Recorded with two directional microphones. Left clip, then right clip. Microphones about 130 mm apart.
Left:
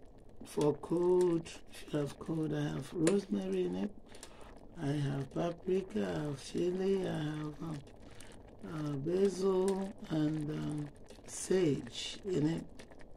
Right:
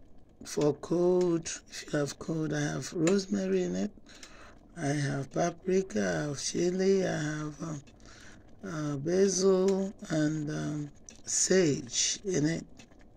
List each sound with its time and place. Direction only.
0.4 s speech: 55° right (ahead or behind)